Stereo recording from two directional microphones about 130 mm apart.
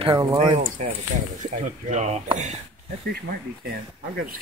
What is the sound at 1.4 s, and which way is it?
Speech, 75° right (ahead or behind).